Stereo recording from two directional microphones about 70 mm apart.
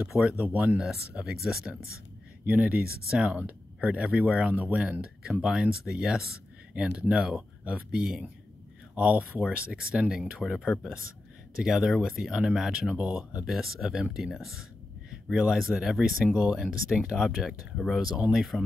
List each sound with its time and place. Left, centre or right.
0.4 s speech: right
0.7 s speech: centre
2.4 s speech: right
6.7 s speech: centre
8.9 s speech: centre
10.1 s speech: centre